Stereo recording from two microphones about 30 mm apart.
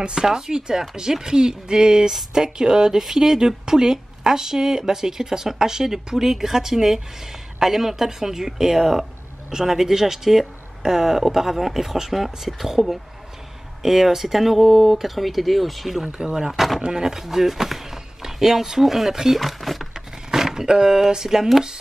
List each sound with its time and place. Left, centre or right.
0.0 s speech: right; by 12.7 s centre
13.8 s speech: centre
16.0 s speech: centre
16.5 s speech: centre
17.0 s speech: centre
19.4 s speech: centre
19.9 s speech: centre